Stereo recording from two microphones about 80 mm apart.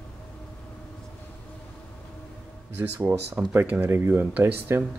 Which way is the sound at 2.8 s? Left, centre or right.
Right.